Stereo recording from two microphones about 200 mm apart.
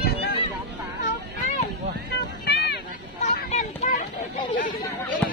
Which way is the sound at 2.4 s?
55° left (ahead or behind).